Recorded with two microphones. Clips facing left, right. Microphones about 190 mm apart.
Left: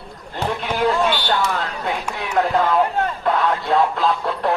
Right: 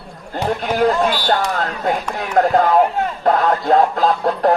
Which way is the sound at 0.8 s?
45° right (ahead or behind).